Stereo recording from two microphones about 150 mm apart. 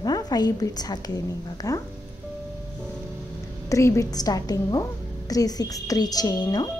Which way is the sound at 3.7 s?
20° left (ahead or behind).